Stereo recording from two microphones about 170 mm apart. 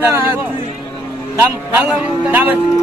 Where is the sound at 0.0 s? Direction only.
10° right (ahead or behind).